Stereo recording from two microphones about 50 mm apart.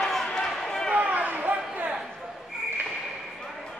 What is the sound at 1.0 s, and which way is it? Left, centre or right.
Chatter, right.